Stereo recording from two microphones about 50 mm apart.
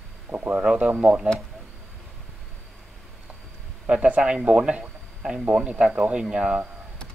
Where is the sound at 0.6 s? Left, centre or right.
Right.